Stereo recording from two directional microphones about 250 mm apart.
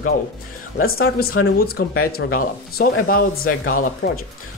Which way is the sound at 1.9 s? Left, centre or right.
Left.